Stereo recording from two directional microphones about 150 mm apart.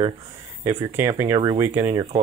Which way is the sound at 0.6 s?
20° right (ahead or behind).